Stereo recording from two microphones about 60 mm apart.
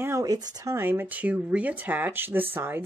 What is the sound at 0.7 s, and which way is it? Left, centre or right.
Speech, right.